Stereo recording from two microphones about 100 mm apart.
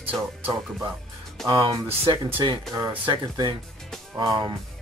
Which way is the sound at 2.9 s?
55° right (ahead or behind).